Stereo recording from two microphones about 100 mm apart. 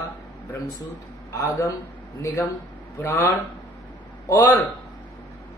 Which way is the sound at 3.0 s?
20° left (ahead or behind).